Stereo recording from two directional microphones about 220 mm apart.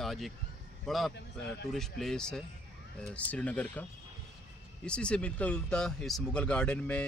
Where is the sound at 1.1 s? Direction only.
50° left (ahead or behind).